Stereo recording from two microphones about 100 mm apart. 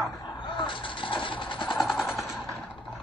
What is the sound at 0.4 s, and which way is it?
Vehicle, 55° left (ahead or behind).